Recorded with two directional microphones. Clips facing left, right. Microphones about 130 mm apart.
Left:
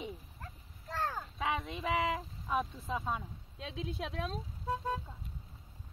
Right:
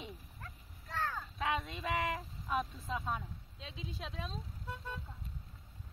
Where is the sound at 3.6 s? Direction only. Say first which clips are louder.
Left 6 dB; 65° left (ahead or behind).